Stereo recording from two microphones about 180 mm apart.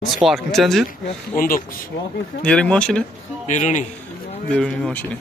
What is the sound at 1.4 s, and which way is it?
Speech, 50° left (ahead or behind).